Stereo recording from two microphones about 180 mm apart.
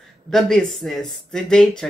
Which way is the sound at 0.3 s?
5° left (ahead or behind).